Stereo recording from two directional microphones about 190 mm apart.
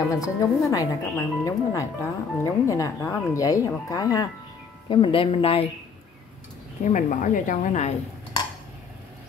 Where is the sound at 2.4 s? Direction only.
15° left (ahead or behind).